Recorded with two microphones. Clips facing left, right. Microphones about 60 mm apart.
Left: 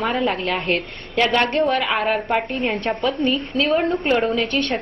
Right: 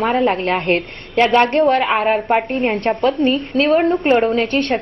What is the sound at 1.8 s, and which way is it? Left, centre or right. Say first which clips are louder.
Speech: right 4 dB; right.